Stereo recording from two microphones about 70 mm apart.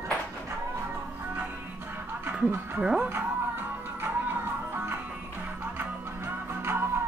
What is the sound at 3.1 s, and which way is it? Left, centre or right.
Music, right.